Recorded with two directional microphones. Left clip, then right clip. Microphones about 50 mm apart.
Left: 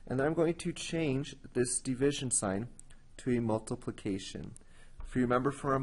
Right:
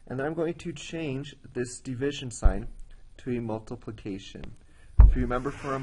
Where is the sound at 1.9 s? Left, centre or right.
Left.